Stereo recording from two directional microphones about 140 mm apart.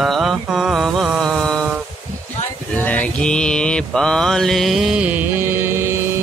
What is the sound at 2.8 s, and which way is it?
Mantra, 10° left (ahead or behind).